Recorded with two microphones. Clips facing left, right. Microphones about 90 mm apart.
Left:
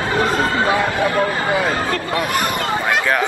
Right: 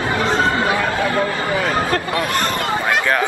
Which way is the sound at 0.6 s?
20° left (ahead or behind).